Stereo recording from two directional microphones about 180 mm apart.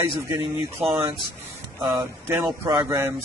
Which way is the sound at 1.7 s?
15° right (ahead or behind).